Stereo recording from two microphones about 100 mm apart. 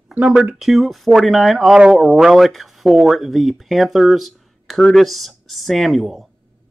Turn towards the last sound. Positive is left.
turn(degrees=0)  # may be behind; listen again after turning